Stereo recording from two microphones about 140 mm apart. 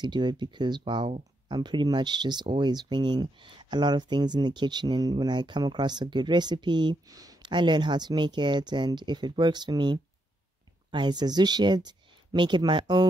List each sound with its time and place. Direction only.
0.0 s speech: 30° right (ahead or behind)